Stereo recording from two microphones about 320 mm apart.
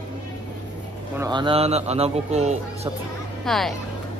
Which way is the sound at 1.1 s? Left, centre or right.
Centre.